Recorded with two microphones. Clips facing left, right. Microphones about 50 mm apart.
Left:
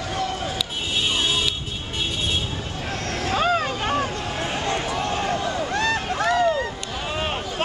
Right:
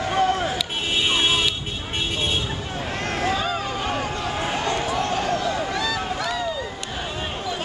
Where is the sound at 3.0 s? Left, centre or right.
Right.